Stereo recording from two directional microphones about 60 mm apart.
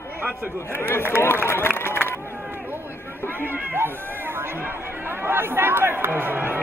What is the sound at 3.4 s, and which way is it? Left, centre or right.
Speech, right.